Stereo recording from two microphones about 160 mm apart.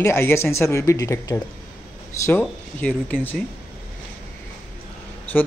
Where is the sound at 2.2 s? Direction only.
10° left (ahead or behind).